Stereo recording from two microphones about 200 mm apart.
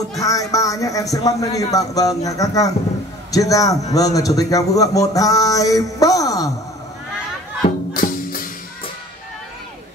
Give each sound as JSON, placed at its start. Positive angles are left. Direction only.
{"t": 0.2, "sound": "speech", "side_deg": 15}
{"t": 7.9, "sound": "music", "side_deg": 45}